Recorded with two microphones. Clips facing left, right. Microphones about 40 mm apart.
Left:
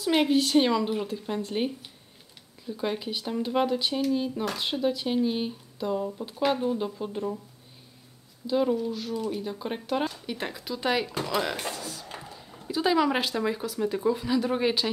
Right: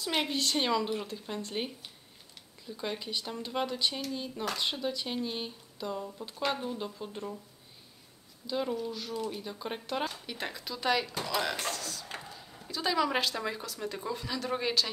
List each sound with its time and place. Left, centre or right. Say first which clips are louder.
0.0 s speech: left 8 dB; centre
8.5 s speech: left 7 dB; centre